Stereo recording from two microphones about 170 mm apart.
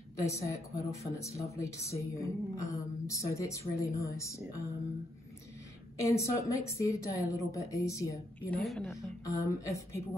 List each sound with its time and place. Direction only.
0.2 s a woman's voice: 15° left (ahead or behind)
6.0 s a woman's voice: 20° left (ahead or behind); by 8.9 s 5° left (ahead or behind)
9.2 s a woman's voice: 20° left (ahead or behind)